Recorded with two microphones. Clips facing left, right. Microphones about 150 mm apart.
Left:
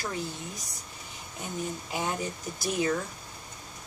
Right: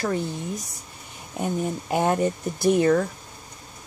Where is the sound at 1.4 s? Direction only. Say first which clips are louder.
Right 9 dB; 55° right (ahead or behind).